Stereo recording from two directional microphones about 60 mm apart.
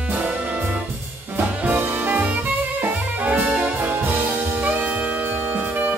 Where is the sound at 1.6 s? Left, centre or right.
Right.